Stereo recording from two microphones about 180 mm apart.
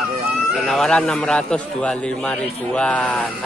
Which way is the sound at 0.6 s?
Centre (ahead or behind).